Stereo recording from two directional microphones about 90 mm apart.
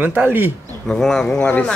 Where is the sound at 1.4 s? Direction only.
20° left (ahead or behind).